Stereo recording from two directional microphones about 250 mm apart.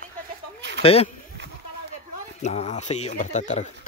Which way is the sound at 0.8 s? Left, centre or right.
Left.